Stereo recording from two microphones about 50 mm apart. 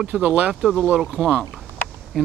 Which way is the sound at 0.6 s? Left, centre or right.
Centre.